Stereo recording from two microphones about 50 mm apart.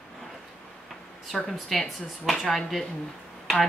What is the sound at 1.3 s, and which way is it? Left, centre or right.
Speech, centre.